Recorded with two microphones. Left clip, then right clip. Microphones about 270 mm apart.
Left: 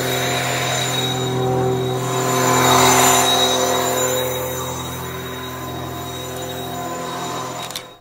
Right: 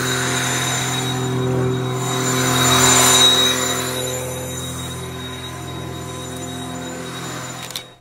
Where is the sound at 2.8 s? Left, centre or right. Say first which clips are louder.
Even; right.